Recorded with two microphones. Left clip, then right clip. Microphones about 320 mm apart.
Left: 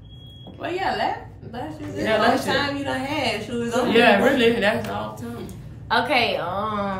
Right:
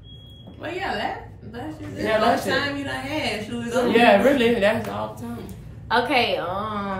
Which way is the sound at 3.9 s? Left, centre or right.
Centre.